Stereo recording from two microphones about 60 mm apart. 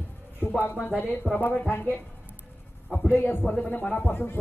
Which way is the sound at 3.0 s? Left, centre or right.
Left.